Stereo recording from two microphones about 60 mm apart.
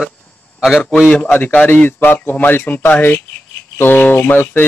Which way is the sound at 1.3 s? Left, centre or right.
Left.